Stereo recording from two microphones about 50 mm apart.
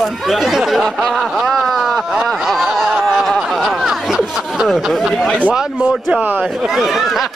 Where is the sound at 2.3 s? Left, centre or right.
Centre.